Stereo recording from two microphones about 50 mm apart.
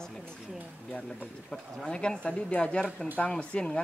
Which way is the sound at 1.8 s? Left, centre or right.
Centre.